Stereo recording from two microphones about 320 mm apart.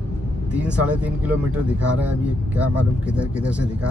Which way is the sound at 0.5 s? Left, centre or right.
Centre.